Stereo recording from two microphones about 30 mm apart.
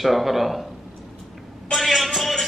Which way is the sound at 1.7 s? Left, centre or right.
Centre.